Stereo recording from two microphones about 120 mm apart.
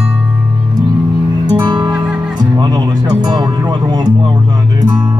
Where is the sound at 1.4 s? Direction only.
35° right (ahead or behind).